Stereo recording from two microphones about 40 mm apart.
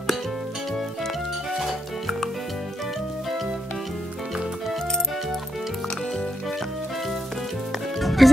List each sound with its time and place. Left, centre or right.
1.6 s music: centre
8.0 s music: centre